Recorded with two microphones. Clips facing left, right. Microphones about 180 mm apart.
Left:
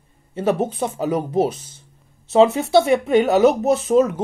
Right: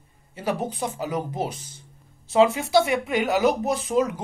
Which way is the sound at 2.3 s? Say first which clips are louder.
Left 4 dB; 25° left (ahead or behind).